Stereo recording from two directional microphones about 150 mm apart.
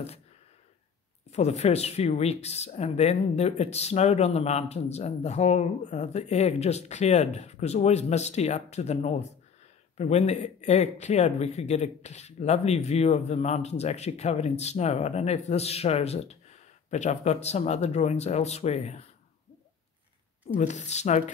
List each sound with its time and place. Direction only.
1.3 s speech: 45° left (ahead or behind)
20.5 s speech: 50° left (ahead or behind)